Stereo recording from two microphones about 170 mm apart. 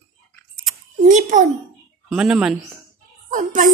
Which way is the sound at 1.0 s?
50° right (ahead or behind).